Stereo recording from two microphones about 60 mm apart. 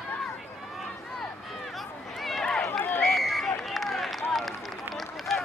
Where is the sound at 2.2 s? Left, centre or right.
Centre.